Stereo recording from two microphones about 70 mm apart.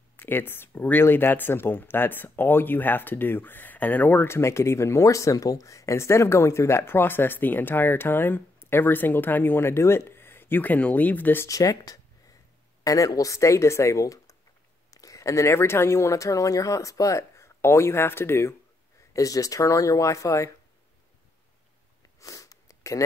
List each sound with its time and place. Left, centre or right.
0.2 s speech: left
4.3 s speech: left
11.4 s speech: left
19.1 s speech: left
22.2 s sniff: left